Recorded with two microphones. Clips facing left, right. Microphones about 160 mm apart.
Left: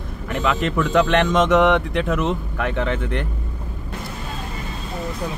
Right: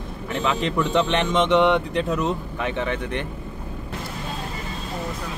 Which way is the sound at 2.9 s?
20° right (ahead or behind).